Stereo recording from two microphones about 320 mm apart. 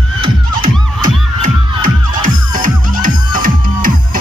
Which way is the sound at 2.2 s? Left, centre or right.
Right.